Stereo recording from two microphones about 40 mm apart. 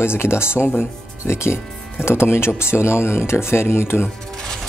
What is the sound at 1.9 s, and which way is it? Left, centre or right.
Speech, left.